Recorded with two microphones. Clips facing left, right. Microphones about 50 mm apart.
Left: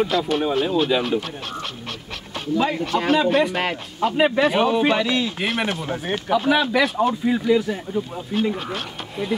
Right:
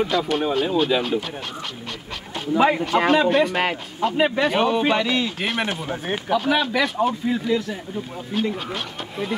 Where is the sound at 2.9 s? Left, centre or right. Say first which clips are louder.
Right 2 dB; right.